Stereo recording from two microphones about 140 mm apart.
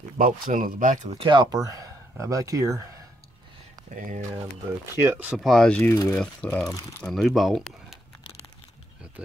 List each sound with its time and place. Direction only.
0.2 s speech: 80° right
1.1 s speech: 35° right (ahead or behind)
3.7 s a sound: 70° right (ahead or behind)
4.9 s speech: 15° right (ahead or behind)
5.3 s speech: centre (ahead or behind)
5.8 s speech: 20° left (ahead or behind)
6.1 s speech: 10° left (ahead or behind)
6.7 s speech: 25° left (ahead or behind)
7.0 s speech: centre (ahead or behind)